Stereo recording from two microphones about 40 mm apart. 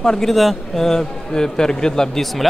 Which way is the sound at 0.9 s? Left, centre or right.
Centre.